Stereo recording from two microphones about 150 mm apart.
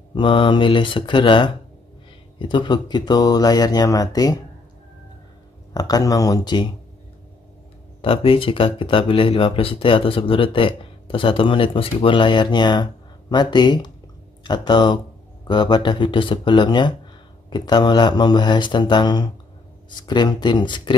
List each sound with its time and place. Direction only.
0.1 s speech: 35° left (ahead or behind)
5.7 s speech: 25° left (ahead or behind)
8.0 s speech: 35° left (ahead or behind)